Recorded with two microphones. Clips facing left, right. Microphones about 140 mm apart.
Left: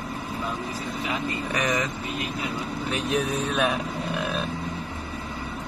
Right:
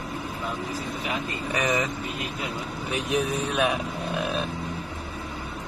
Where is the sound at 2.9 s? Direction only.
10° right (ahead or behind).